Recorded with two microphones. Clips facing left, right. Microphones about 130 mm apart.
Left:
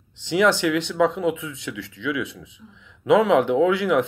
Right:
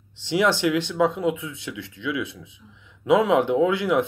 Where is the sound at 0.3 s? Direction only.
15° right (ahead or behind).